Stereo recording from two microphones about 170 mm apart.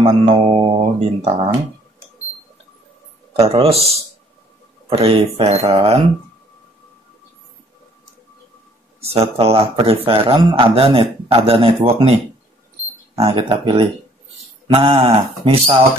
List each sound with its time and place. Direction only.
0.0 s a man's voice: 35° right (ahead or behind)
3.3 s a man's voice: 35° right (ahead or behind)
9.0 s a man's voice: 35° right (ahead or behind)
13.2 s a man's voice: 35° right (ahead or behind)